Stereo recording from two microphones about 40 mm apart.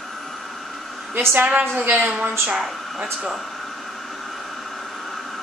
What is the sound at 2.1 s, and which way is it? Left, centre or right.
Speech, right.